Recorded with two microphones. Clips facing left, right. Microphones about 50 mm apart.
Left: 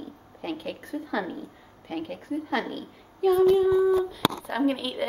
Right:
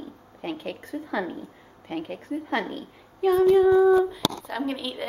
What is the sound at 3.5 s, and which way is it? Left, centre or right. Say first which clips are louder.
Child singing: right 4 dB; right.